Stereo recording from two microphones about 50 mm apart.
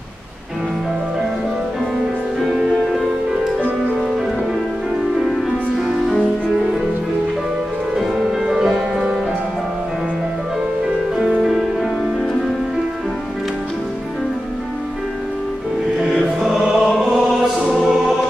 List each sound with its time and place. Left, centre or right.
2.4 s music: centre
5.9 s music: centre
7.9 s music: centre
16.1 s music: centre
17.0 s choir: centre